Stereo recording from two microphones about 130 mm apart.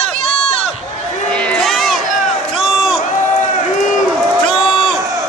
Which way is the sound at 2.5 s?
Centre (ahead or behind).